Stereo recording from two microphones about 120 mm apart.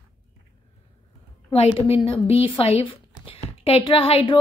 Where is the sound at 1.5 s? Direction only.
55° left (ahead or behind).